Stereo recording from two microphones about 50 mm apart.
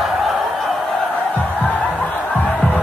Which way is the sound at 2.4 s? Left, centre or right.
Left.